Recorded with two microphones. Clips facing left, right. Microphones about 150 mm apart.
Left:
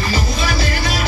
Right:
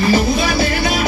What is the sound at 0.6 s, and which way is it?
Music, 55° right (ahead or behind).